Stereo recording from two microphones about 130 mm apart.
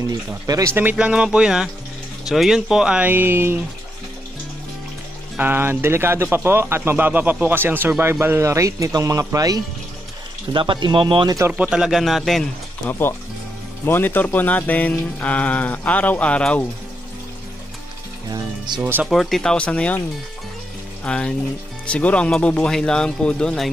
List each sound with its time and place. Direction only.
0.5 s speech: 25° right (ahead or behind)
0.7 s speech: 10° right (ahead or behind)
5.4 s speech: 15° right (ahead or behind)
10.5 s speech: 35° right (ahead or behind)
11.5 s speech: 10° right (ahead or behind)
13.8 s speech: 15° left (ahead or behind)
18.8 s speech: 15° right (ahead or behind)
19.0 s speech: centre (ahead or behind)
21.0 s speech: 5° left (ahead or behind)